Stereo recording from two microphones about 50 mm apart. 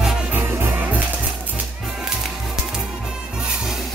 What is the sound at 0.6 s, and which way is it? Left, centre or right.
Music, right.